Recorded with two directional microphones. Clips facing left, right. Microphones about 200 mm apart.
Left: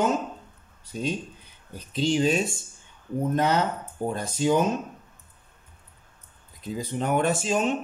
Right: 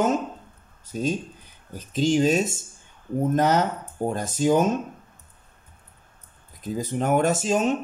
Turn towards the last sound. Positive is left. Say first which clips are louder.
# right 2 dB
turn(degrees=-40)  # may be behind; listen again after turning